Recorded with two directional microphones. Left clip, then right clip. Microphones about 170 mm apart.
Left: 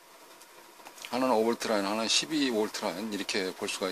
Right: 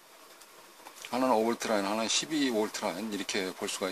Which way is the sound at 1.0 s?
10° left (ahead or behind).